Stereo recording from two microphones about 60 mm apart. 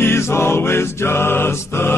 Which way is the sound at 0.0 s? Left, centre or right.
Left.